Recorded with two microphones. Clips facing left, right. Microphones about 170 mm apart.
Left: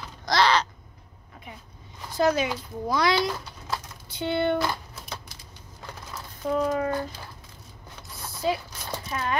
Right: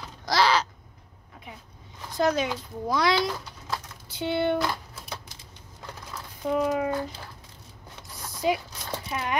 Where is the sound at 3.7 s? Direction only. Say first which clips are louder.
Left 1 dB; centre (ahead or behind).